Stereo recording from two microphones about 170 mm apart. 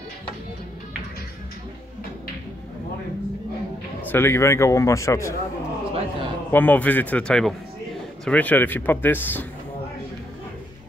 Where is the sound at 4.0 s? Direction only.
10° left (ahead or behind).